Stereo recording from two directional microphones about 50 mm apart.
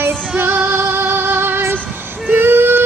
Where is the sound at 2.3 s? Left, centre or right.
Right.